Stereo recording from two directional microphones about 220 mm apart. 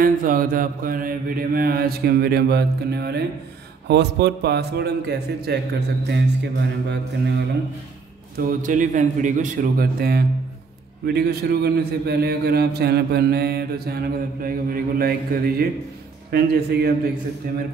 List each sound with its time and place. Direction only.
0.0 s a man's voice: 40° right (ahead or behind)
8.4 s a man's voice: 35° right (ahead or behind)